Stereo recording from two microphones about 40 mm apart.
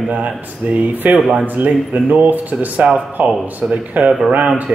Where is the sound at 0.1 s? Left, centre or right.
Right.